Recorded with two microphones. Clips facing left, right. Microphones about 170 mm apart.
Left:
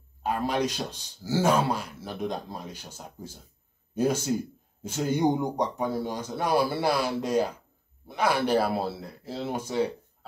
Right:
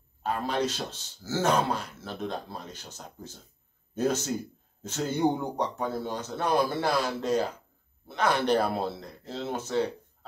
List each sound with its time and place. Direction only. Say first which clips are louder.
0.2 s speech: left 2 dB; 10° left (ahead or behind)